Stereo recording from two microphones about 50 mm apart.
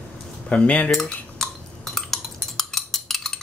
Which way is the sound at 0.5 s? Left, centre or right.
Left.